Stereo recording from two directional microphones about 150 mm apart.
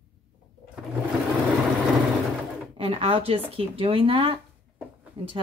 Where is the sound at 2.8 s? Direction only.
40° right (ahead or behind).